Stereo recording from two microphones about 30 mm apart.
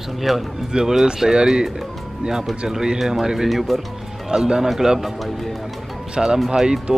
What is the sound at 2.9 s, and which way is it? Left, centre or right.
Speech, centre.